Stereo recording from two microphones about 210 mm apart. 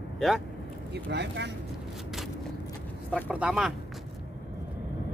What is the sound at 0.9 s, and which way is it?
Speech, 55° right (ahead or behind).